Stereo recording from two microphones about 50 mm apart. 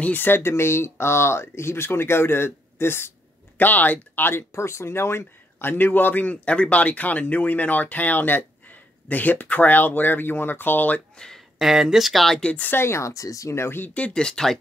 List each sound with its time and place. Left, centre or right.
0.0 s speech: left
0.3 s speech: left
3.5 s speech: left
4.6 s a man's voice: left
6.4 s speech: left
11.1 s a sound: centre
11.5 s speech: centre
12.7 s speech: left
13.7 s a man's voice: left
13.9 s speech: left
14.2 s speech: centre